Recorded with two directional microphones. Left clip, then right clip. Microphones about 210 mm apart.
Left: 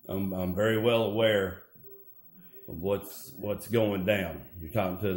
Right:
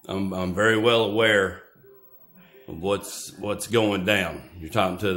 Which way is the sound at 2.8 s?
15° right (ahead or behind).